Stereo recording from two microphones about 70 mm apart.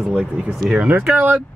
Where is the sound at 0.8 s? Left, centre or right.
Right.